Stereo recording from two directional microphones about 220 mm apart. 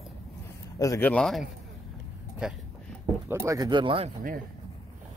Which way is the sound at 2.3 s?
Centre (ahead or behind).